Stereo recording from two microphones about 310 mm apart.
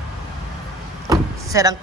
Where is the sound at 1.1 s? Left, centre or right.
Centre.